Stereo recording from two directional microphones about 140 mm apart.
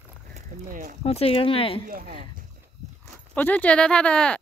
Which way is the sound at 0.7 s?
80° right.